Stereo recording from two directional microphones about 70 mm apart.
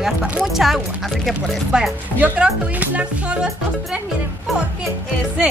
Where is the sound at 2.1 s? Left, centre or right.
Centre.